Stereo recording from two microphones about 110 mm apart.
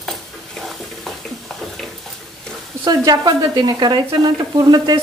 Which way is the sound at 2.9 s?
35° right (ahead or behind).